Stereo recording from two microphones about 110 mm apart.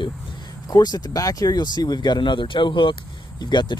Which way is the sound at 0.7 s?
35° left (ahead or behind).